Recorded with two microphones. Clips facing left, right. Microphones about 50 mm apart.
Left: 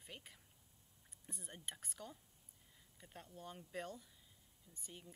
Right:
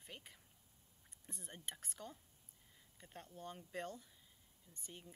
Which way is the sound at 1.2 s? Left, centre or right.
Centre.